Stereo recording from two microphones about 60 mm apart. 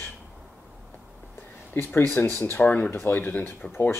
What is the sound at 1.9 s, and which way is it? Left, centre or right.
Speech, left.